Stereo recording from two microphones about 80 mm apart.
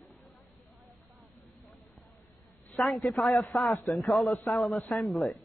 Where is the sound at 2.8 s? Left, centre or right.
Centre.